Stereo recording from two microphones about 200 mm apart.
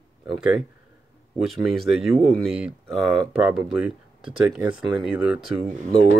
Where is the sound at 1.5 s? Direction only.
Centre (ahead or behind).